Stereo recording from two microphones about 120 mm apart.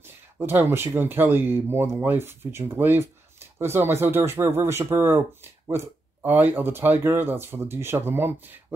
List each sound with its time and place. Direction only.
0.0 s speech: 20° right (ahead or behind)